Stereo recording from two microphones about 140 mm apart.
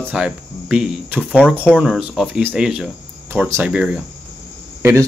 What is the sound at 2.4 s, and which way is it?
Speech, 15° right (ahead or behind).